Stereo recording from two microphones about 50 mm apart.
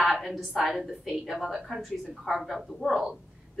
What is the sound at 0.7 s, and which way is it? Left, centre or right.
A woman's voice, centre.